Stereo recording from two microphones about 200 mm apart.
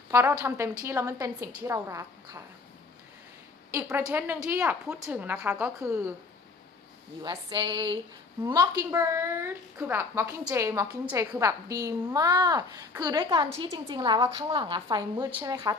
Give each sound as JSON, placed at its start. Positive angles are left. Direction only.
{"t": 0.1, "sound": "a woman's voice", "side_deg": -15}
{"t": 3.9, "sound": "a woman's voice", "side_deg": -10}
{"t": 7.2, "sound": "a woman's voice", "side_deg": -25}